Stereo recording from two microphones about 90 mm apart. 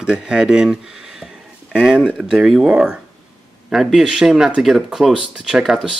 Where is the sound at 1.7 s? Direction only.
10° right (ahead or behind).